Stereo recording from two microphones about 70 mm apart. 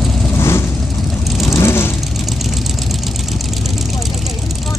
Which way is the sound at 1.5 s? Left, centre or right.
Left.